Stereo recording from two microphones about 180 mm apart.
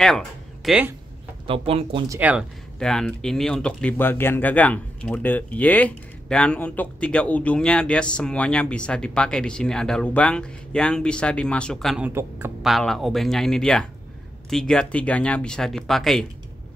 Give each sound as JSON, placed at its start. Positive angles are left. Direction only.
{"t": 0.7, "sound": "a man's voice", "side_deg": -10}
{"t": 1.5, "sound": "speech", "side_deg": -30}
{"t": 2.0, "sound": "a man's voice", "side_deg": -10}
{"t": 2.8, "sound": "speech", "side_deg": 5}
{"t": 12.1, "sound": "a man's voice", "side_deg": -15}
{"t": 12.6, "sound": "speech", "side_deg": 0}